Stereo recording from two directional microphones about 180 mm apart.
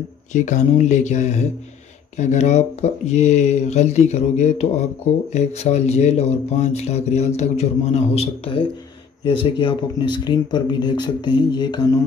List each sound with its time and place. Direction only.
0.3 s speech: 40° left (ahead or behind); by 11.8 s 25° left (ahead or behind)